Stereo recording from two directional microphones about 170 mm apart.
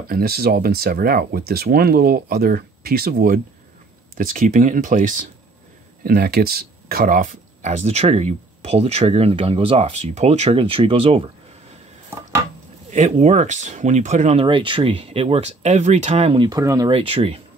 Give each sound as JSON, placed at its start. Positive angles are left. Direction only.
{"t": 0.1, "sound": "speech", "side_deg": -65}
{"t": 6.0, "sound": "speech", "side_deg": -65}
{"t": 12.9, "sound": "speech", "side_deg": -45}
{"t": 16.4, "sound": "speech", "side_deg": -20}
{"t": 17.0, "sound": "speech", "side_deg": -35}